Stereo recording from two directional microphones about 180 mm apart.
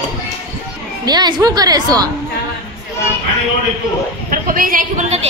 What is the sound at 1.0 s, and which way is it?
A woman's voice, 25° right (ahead or behind).